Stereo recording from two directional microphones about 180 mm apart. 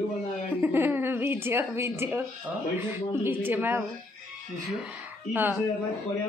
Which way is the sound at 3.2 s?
10° right (ahead or behind).